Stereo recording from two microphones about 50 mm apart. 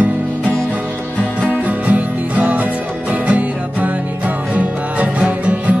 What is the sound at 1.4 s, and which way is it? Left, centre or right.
Music, right.